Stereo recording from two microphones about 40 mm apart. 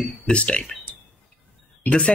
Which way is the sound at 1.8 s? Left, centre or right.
Left.